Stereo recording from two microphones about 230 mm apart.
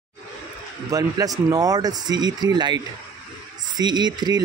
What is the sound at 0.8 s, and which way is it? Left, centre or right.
Speech, centre.